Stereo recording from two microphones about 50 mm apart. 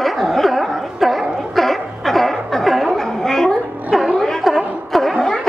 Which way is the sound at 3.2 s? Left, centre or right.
Centre.